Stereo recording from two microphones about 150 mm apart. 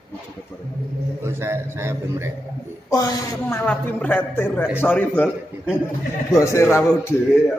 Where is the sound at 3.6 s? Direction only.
10° left (ahead or behind).